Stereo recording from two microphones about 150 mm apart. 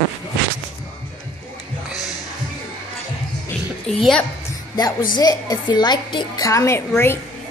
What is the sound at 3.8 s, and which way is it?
Speech, centre (ahead or behind).